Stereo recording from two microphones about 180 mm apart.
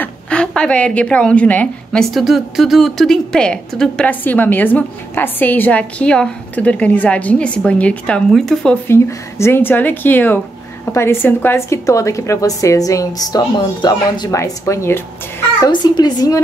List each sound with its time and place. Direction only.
0.0 s speech: 5° left (ahead or behind)
8.8 s speech: 15° left (ahead or behind)
15.6 s a woman's voice: 25° left (ahead or behind)